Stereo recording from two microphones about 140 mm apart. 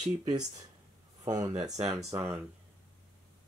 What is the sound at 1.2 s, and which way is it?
Speech, 25° right (ahead or behind).